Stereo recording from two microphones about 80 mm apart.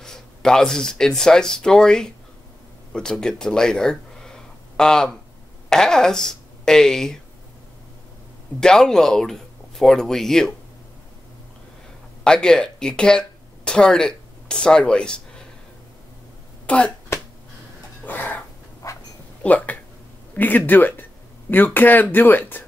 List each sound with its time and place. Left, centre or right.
0.0 s speech: centre
8.5 s speech: centre
12.2 s speech: centre
16.6 s speech: centre
18.0 s a sound: left
18.8 s dog: left
19.4 s speech: centre